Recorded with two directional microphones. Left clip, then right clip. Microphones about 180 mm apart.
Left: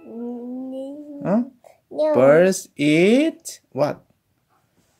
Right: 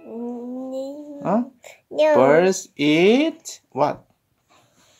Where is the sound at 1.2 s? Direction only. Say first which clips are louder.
Even; 60° left (ahead or behind).